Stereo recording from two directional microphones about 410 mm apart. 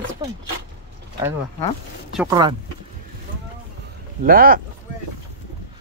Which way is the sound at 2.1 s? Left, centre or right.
Centre.